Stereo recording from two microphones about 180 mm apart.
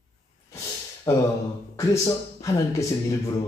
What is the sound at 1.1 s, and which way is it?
A man's voice, 15° left (ahead or behind).